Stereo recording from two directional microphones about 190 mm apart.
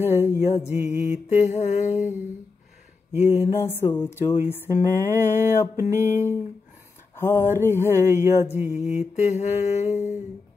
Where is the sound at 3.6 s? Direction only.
15° left (ahead or behind).